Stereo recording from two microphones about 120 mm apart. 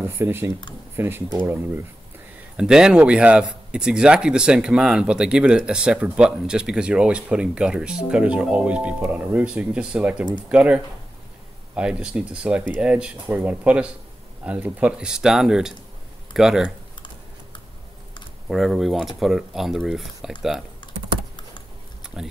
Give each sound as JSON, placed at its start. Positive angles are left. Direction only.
{"t": 0.1, "sound": "speech", "side_deg": -20}
{"t": 2.5, "sound": "speech", "side_deg": -5}
{"t": 18.5, "sound": "speech", "side_deg": 0}
{"t": 22.0, "sound": "a sound", "side_deg": -5}